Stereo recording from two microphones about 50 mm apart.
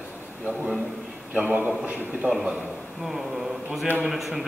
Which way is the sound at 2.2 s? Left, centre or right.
Centre.